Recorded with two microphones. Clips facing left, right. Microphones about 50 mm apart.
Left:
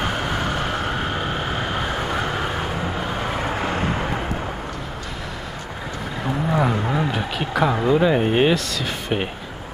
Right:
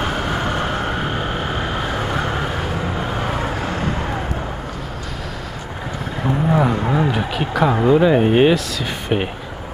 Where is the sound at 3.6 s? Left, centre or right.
Centre.